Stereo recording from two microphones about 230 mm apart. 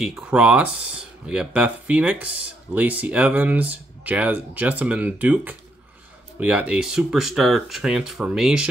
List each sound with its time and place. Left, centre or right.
0.0 s speech: centre